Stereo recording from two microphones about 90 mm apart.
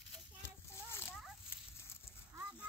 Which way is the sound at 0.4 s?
25° left (ahead or behind).